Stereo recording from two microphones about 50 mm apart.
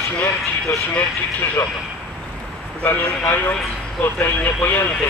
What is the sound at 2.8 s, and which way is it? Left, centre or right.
A man's voice, left.